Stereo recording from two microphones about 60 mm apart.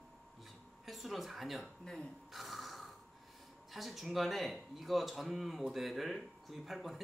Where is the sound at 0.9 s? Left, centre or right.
Centre.